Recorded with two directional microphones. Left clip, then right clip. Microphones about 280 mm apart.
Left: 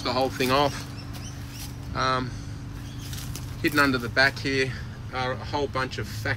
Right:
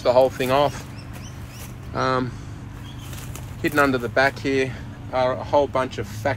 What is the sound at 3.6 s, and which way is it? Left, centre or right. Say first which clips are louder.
Speech: right 3 dB; centre.